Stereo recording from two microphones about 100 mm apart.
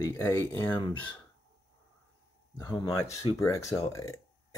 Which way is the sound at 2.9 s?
30° left (ahead or behind).